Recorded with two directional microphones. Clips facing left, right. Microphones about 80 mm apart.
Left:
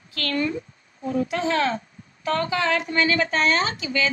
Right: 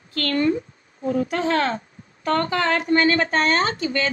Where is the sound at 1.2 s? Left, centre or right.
Right.